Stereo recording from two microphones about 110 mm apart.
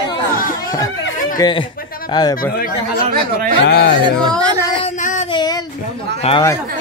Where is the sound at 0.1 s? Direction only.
35° left (ahead or behind).